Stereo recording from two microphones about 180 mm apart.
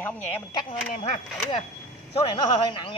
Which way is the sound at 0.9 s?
45° left (ahead or behind).